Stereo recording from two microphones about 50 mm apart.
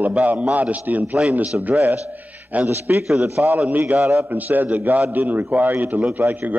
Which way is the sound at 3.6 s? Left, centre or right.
Right.